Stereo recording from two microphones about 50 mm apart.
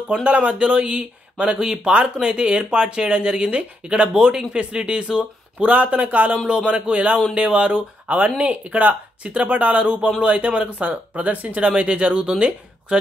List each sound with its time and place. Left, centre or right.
0.2 s speech: right
5.7 s speech: right